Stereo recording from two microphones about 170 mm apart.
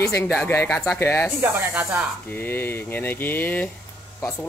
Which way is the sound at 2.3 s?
10° left (ahead or behind).